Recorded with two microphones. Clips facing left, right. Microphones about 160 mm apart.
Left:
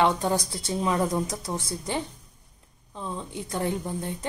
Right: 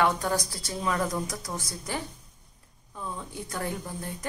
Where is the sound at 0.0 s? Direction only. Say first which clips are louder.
Left 2 dB; 25° left (ahead or behind).